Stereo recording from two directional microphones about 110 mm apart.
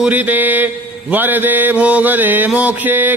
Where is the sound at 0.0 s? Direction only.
15° right (ahead or behind).